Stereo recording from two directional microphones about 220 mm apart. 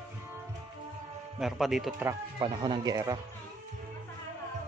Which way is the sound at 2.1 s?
20° right (ahead or behind).